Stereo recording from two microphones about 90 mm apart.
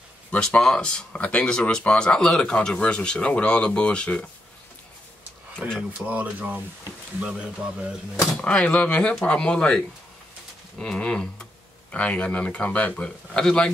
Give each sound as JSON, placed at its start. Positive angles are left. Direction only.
{"t": 0.3, "sound": "speech", "side_deg": 10}
{"t": 5.8, "sound": "speech", "side_deg": -15}
{"t": 8.4, "sound": "speech", "side_deg": 15}